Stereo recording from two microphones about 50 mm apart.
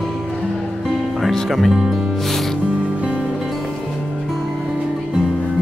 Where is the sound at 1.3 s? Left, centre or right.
Centre.